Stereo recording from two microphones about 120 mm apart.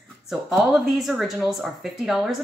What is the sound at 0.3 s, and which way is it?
Speech, centre (ahead or behind).